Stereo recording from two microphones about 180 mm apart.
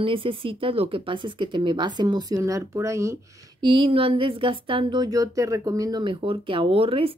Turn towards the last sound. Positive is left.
turn(degrees=-30)  # may be behind; listen again after turning